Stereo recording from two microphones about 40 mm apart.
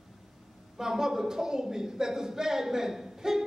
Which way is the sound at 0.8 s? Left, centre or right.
Centre.